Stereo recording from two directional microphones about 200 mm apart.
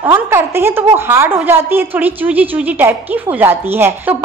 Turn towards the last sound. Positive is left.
turn(degrees=-10)  # may be behind; listen again after turning